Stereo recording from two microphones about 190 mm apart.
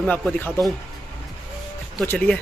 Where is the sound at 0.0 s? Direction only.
10° left (ahead or behind).